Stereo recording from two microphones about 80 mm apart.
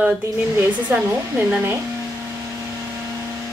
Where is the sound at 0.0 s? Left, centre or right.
Right.